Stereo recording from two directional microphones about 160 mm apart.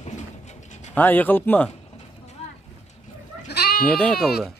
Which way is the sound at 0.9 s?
10° left (ahead or behind).